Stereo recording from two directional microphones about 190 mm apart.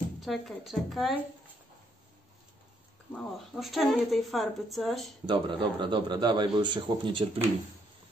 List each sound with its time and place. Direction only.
0.2 s speech: centre (ahead or behind)
3.1 s speech: centre (ahead or behind)
5.2 s a man's voice: 25° right (ahead or behind)